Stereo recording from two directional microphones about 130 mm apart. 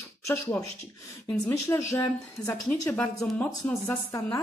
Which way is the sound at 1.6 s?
25° left (ahead or behind).